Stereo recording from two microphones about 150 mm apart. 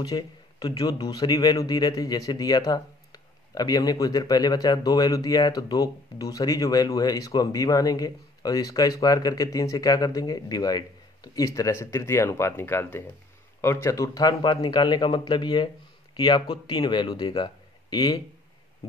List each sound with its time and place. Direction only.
0.0 s a man's voice: 25° left (ahead or behind)